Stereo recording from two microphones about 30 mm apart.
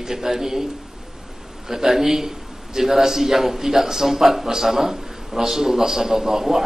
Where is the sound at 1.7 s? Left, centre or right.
Centre.